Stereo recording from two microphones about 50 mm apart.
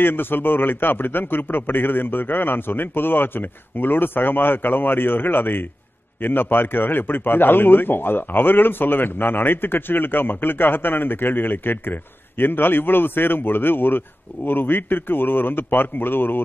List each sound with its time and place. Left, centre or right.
0.0 s a man's voice: left